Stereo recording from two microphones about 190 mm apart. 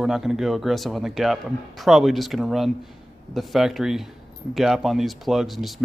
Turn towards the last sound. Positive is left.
turn(degrees=0)  # may be behind; listen again after turning